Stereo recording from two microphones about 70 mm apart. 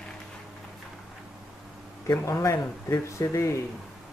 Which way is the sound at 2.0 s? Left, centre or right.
Left.